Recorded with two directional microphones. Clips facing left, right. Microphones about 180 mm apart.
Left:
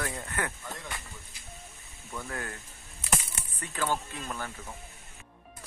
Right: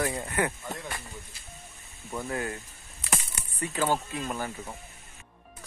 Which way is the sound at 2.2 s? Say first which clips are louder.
Right 7 dB; 15° right (ahead or behind).